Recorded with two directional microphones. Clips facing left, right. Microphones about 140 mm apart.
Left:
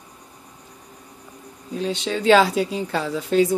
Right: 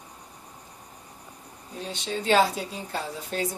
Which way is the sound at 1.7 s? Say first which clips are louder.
Left 8 dB; 90° left.